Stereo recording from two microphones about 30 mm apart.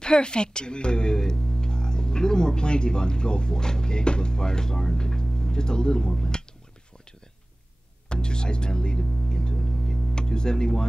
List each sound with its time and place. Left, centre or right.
0.0 s speech: left
8.1 s music: left
10.1 s speech: left